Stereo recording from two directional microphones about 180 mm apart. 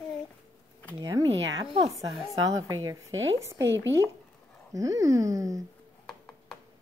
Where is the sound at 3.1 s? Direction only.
90° right.